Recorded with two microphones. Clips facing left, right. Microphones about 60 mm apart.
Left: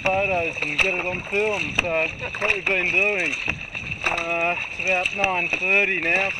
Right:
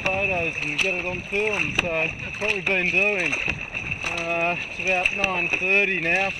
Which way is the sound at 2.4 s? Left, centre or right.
Left.